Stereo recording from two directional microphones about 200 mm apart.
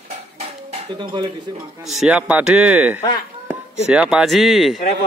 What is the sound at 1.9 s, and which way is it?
Speech, 5° right (ahead or behind).